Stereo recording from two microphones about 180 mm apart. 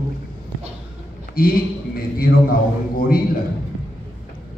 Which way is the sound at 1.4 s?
55° left (ahead or behind).